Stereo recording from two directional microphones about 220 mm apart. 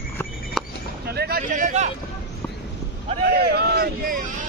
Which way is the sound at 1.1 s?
45° right (ahead or behind).